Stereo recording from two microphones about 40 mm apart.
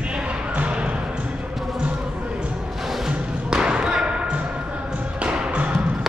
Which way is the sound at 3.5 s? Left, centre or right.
Right.